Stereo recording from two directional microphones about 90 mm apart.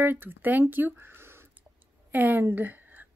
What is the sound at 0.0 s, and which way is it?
A woman's voice, 20° right (ahead or behind).